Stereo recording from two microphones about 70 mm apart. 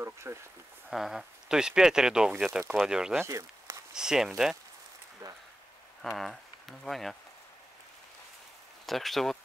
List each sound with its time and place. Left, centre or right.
0.0 s speech: right
0.8 s speech: centre
3.3 s a sound: right
3.9 s speech: centre
5.2 s speech: right
6.0 s speech: centre
8.8 s speech: centre